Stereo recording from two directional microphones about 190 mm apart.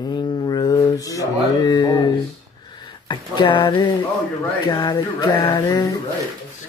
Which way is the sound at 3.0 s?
25° left (ahead or behind).